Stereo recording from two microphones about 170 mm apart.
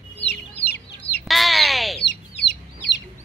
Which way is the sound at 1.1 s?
Centre (ahead or behind).